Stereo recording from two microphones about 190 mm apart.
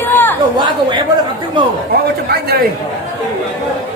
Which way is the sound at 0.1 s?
10° left (ahead or behind).